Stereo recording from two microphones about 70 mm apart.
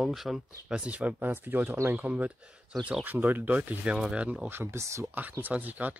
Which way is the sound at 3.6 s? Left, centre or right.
Centre.